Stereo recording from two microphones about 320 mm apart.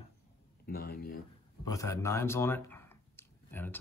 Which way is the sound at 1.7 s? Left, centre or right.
Centre.